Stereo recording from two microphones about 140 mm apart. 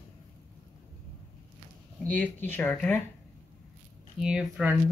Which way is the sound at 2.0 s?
10° left (ahead or behind).